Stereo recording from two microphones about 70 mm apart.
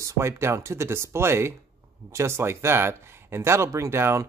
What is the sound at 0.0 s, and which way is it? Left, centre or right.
Speech, right.